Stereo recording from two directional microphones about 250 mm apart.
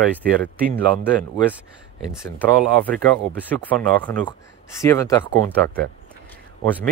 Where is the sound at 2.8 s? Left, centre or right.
Centre.